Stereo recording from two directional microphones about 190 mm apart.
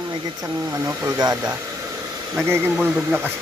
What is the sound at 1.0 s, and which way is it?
Speech, 20° right (ahead or behind).